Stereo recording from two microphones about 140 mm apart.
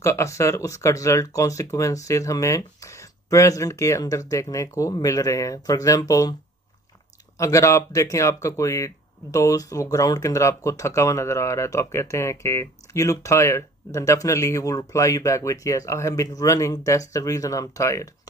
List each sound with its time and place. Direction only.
0.0 s speech: 20° left (ahead or behind)
7.3 s speech: 20° left (ahead or behind)